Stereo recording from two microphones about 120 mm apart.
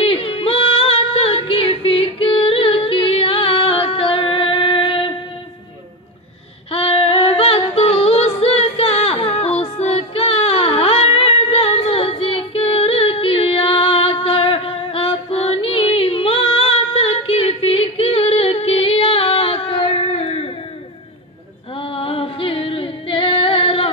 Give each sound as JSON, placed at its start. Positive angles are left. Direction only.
{"t": 0.0, "sound": "music", "side_deg": 50}
{"t": 6.7, "sound": "female singing", "side_deg": 55}
{"t": 20.1, "sound": "a sound", "side_deg": 55}
{"t": 21.7, "sound": "female singing", "side_deg": 50}